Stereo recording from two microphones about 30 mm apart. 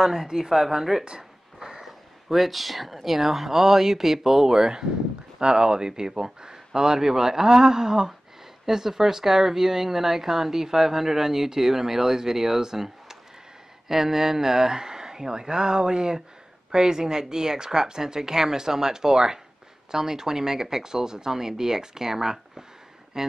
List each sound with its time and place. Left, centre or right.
0.0 s speech: centre
1.6 s a sound: centre
1.9 s speech: centre